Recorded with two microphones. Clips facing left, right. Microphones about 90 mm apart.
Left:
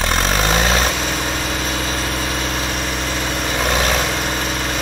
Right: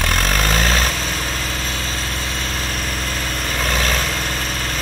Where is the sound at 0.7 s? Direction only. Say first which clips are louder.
Left 2 dB; 35° left (ahead or behind).